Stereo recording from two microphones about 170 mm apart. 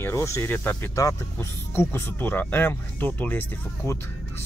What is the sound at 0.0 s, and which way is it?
Speech, 15° left (ahead or behind).